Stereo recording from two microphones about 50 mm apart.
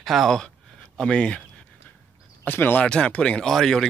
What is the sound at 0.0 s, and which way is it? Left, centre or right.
Speech, centre.